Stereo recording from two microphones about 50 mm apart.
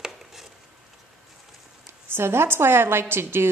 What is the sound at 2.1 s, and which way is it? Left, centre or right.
A woman's voice, right.